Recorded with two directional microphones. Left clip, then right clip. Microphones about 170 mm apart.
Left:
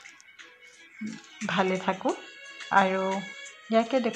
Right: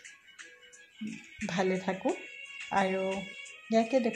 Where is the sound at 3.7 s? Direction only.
15° left (ahead or behind).